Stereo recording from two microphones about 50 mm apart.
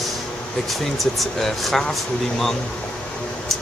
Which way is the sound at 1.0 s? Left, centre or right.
Centre.